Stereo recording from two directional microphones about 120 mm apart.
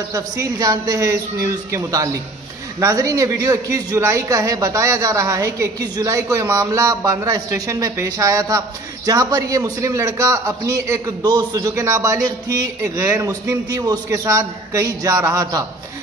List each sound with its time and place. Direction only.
0.1 s a man's voice: 30° right (ahead or behind)
11.7 s a man's voice: 25° right (ahead or behind)